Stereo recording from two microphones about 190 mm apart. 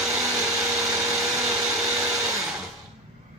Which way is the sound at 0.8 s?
15° right (ahead or behind).